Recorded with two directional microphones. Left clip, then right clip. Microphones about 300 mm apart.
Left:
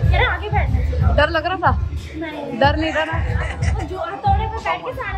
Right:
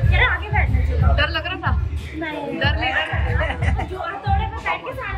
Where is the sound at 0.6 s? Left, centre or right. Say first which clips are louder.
Even; centre.